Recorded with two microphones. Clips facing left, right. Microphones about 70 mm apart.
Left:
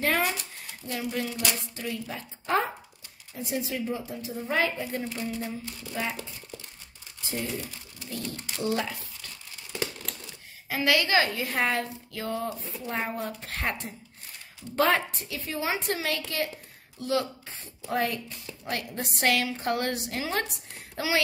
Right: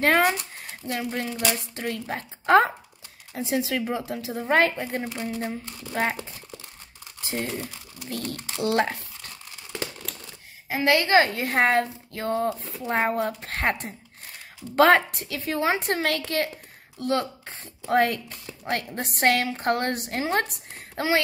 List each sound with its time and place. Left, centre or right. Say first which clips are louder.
0.0 s a woman's voice: right 6 dB; right
3.3 s a woman's voice: right 5 dB; right
7.2 s a woman's voice: right 3 dB; right
10.7 s a woman's voice: right 4 dB; right
14.8 s a woman's voice: right 7 dB; right